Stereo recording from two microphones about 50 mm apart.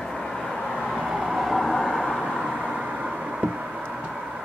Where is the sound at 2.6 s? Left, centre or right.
Centre.